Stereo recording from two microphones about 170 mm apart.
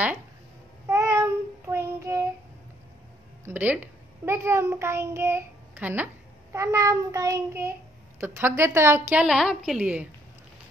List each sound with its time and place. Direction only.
0.8 s child singing: 15° right (ahead or behind)
3.4 s a child's voice: 10° right (ahead or behind)